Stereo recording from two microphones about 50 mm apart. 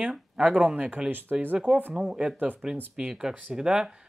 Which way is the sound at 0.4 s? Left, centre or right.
Right.